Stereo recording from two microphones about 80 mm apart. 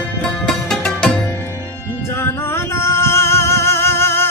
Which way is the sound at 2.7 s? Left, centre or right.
Left.